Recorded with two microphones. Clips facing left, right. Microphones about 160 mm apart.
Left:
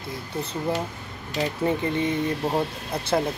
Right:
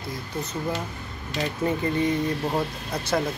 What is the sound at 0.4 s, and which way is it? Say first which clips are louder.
Speech: left 3 dB; 30° left (ahead or behind).